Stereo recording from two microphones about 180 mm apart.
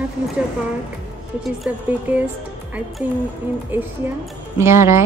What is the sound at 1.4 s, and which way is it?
Speech, 5° right (ahead or behind).